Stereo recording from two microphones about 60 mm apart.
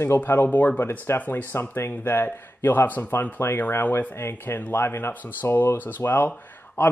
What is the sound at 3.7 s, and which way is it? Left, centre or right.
A man's voice, left.